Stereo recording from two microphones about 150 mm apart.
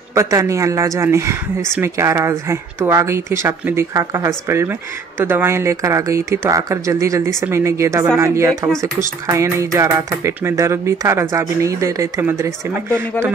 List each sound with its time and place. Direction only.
0.1 s speech: 20° right (ahead or behind)